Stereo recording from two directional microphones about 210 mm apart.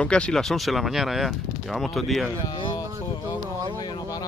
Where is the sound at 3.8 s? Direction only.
20° left (ahead or behind).